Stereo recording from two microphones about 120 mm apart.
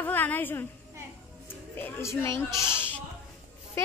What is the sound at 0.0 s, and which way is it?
Speech, 15° left (ahead or behind).